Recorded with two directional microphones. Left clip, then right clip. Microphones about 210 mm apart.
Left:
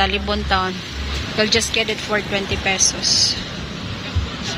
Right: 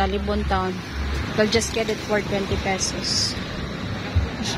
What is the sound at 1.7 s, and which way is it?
Speech, 5° right (ahead or behind).